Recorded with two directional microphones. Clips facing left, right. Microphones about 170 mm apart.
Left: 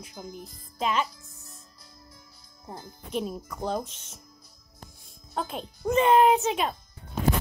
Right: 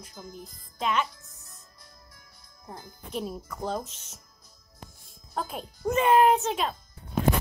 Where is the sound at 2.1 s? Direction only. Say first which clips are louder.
Left 3 dB; 25° left (ahead or behind).